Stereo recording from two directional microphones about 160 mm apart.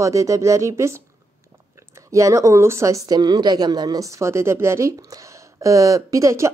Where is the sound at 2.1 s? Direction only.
20° right (ahead or behind).